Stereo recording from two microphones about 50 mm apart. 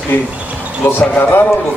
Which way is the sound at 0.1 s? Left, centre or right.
Left.